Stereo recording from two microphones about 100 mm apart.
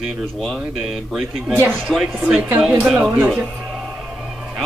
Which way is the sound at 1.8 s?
Centre (ahead or behind).